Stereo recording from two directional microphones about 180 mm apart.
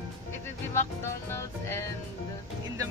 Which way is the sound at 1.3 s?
15° left (ahead or behind).